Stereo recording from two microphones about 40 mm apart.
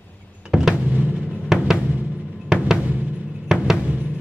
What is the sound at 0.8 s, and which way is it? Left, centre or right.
Music, right.